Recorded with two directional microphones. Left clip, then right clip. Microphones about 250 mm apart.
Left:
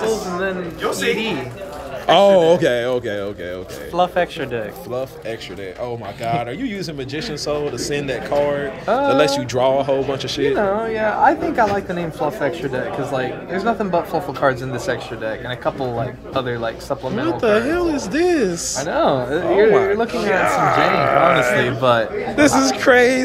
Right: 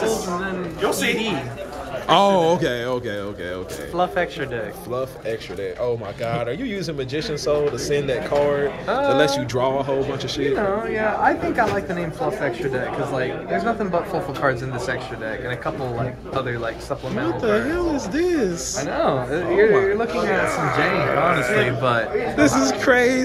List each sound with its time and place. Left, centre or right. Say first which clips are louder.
2.0 s speech: left 4 dB; centre
3.9 s speech: left 4 dB; left
5.9 s speech: left 4 dB; centre
10.6 s speech: left 3 dB; left
17.2 s a man's voice: left 4 dB; centre
18.9 s speech: left 4 dB; left
20.1 s a man's voice: left 3 dB; centre
21.6 s speech: left 4 dB; left
22.4 s a man's voice: left 4 dB; centre